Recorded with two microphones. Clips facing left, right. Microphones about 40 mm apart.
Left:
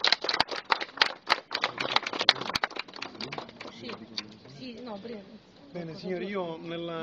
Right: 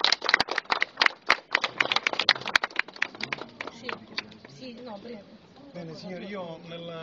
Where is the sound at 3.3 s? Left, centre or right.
Right.